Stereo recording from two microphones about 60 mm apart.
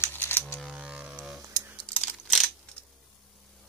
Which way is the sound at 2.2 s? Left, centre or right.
Centre.